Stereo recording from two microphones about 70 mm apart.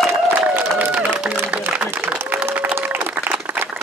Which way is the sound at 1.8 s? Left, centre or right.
Right.